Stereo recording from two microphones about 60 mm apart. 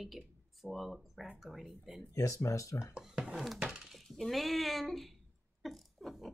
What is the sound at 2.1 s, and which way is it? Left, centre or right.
Speech, left.